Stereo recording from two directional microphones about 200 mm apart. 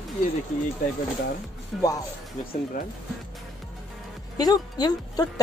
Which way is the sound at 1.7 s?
Centre (ahead or behind).